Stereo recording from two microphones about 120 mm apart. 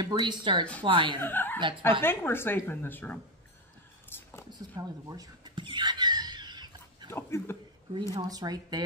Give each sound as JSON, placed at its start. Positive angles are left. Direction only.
{"t": 0.0, "sound": "speech", "side_deg": -40}
{"t": 1.2, "sound": "a woman's voice", "side_deg": 15}
{"t": 4.1, "sound": "a sound", "side_deg": 20}
{"t": 4.5, "sound": "fowl", "side_deg": -30}
{"t": 7.1, "sound": "speech", "side_deg": 20}
{"t": 8.1, "sound": "speech", "side_deg": -30}